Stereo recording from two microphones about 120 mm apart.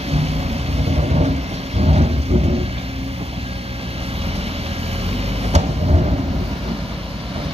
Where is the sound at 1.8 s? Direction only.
60° right (ahead or behind).